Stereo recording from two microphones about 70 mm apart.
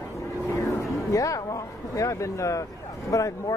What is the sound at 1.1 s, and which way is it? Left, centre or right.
A man's voice, left.